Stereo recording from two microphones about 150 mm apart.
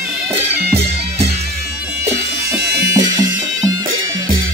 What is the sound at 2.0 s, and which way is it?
Bagpipes, 15° right (ahead or behind).